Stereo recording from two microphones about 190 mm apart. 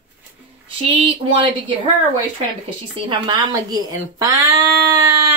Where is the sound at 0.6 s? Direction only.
30° right (ahead or behind).